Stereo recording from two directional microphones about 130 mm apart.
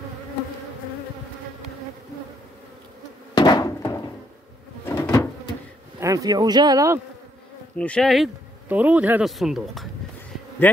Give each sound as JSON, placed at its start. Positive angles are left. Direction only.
{"t": 3.3, "sound": "a sound", "side_deg": 35}
{"t": 3.8, "sound": "cupboard open or close", "side_deg": 20}
{"t": 4.8, "sound": "a sound", "side_deg": 20}
{"t": 5.9, "sound": "speech", "side_deg": -25}
{"t": 7.7, "sound": "speech", "side_deg": 10}
{"t": 8.6, "sound": "a man's voice", "side_deg": -10}
{"t": 9.2, "sound": "speech", "side_deg": 0}